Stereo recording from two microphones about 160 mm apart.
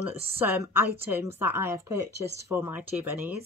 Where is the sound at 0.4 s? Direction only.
15° right (ahead or behind).